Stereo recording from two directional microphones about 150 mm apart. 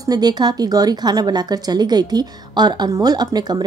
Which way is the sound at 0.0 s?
25° right (ahead or behind).